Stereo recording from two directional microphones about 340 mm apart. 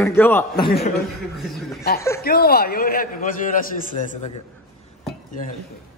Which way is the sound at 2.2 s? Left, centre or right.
Left.